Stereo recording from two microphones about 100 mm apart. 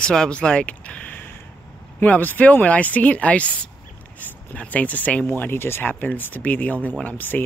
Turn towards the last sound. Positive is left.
turn(degrees=15)  # may be behind; listen again after turning